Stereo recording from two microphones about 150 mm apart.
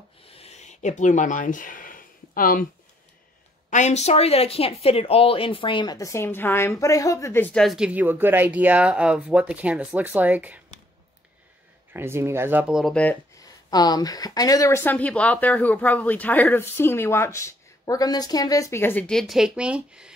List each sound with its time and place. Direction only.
0.3 s a sound: 45° left (ahead or behind); by 2.6 s 70° left (ahead or behind)
3.7 s speech: 50° left (ahead or behind); by 7.6 s 15° left (ahead or behind)
7.6 s speech: 5° right (ahead or behind)
11.9 s speech: 15° right (ahead or behind)
12.9 s speech: 10° left (ahead or behind)
13.4 s speech: 25° left (ahead or behind); by 20.1 s 5° right (ahead or behind)